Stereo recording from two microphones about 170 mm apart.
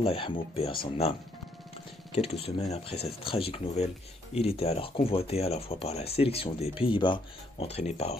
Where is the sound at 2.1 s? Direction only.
35° left (ahead or behind).